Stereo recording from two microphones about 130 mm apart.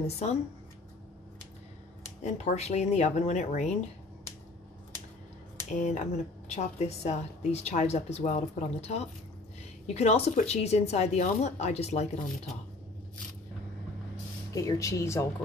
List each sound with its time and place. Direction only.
0.0 s a woman's voice: 55° left (ahead or behind)
2.2 s a woman's voice: 60° left (ahead or behind)
5.7 s speech: 65° left (ahead or behind)
6.5 s a woman's voice: 55° left (ahead or behind)
14.5 s speech: 25° left (ahead or behind)